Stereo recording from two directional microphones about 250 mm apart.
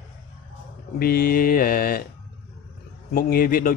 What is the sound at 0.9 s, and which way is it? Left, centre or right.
A man's voice, left.